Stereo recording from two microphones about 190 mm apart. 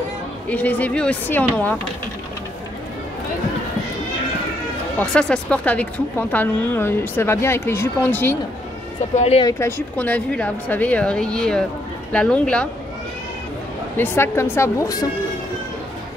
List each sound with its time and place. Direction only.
0.5 s speech: 10° left (ahead or behind)
4.9 s speech: 5° left (ahead or behind)
9.1 s speech: 35° left (ahead or behind)
9.4 s speech: 15° left (ahead or behind)
13.9 s speech: 10° left (ahead or behind)